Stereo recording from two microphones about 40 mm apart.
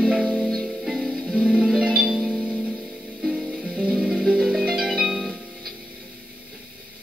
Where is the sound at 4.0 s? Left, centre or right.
Centre.